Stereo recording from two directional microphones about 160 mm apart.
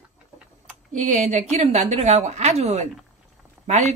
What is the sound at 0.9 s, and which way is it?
Speech, 50° right (ahead or behind).